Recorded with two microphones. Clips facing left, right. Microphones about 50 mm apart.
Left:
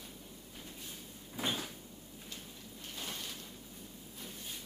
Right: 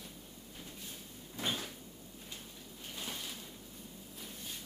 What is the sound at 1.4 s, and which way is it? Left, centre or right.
Cupboard open or close, centre.